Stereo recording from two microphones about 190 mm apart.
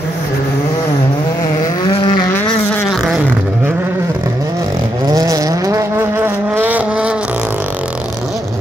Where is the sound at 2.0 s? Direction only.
25° left (ahead or behind).